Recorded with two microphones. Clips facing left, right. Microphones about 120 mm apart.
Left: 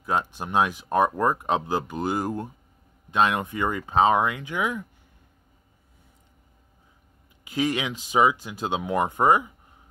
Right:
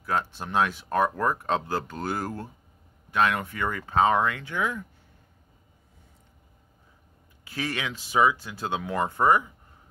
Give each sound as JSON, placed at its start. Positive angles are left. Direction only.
{"t": 0.0, "sound": "speech", "side_deg": 15}
{"t": 7.4, "sound": "speech", "side_deg": 15}